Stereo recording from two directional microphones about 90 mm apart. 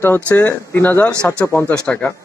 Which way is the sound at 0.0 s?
25° left (ahead or behind).